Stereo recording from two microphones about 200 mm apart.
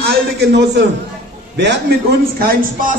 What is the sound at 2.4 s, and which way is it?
Speech, 45° right (ahead or behind).